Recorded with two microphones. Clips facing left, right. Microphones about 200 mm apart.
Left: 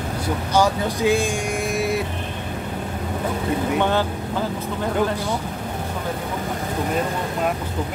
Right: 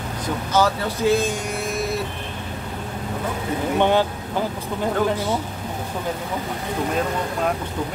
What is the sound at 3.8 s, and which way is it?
Speech, 15° right (ahead or behind).